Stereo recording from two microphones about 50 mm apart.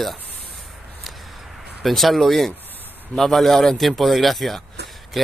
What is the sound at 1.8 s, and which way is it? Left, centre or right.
A man's voice, centre.